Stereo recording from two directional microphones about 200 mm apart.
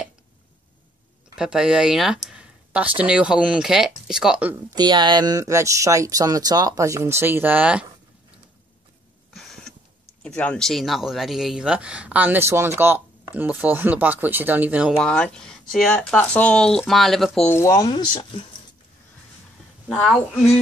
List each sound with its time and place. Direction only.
1.3 s speech: 5° right (ahead or behind)
4.7 s speech: 20° right (ahead or behind); by 7.8 s 5° right (ahead or behind)
9.3 s a sound: centre (ahead or behind)
10.2 s speech: 5° left (ahead or behind)
17.6 s speech: 15° left (ahead or behind)
19.9 s speech: centre (ahead or behind)